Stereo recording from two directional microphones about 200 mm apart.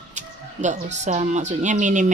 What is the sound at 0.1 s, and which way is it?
Speech, 35° right (ahead or behind).